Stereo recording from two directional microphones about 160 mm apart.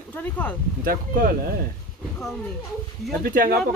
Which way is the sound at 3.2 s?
65° right (ahead or behind).